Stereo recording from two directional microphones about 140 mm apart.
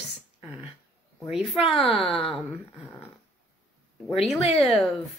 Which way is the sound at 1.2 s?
5° right (ahead or behind).